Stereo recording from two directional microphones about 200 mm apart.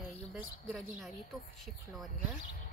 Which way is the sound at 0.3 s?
Centre (ahead or behind).